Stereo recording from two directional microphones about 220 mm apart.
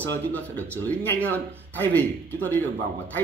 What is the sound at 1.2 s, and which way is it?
Speech, 5° left (ahead or behind).